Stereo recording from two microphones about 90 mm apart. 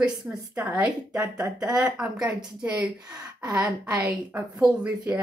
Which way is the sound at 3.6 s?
35° right (ahead or behind).